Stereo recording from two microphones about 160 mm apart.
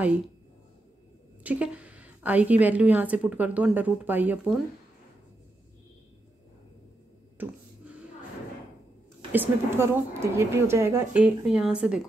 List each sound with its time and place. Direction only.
1.4 s a woman's voice: 10° right (ahead or behind)
7.3 s a sound: 10° right (ahead or behind)
9.3 s a woman's voice: 15° right (ahead or behind)
11.2 s speech: 5° right (ahead or behind)